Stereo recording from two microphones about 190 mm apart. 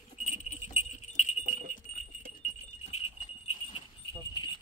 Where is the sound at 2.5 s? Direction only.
35° left (ahead or behind).